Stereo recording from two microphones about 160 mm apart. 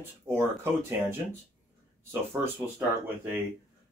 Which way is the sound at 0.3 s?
15° right (ahead or behind).